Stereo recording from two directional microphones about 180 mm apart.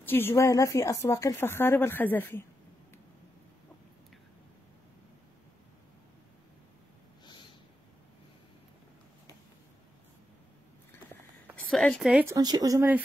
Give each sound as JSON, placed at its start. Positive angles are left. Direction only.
{"t": 0.0, "sound": "speech", "side_deg": 10}
{"t": 11.5, "sound": "a woman's voice", "side_deg": 5}
{"t": 12.4, "sound": "speech", "side_deg": -20}